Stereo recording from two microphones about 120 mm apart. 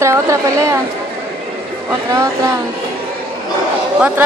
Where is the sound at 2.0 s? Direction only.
30° right (ahead or behind).